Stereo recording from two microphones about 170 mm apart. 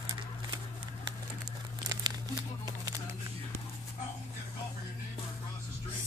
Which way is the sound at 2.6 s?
25° right (ahead or behind).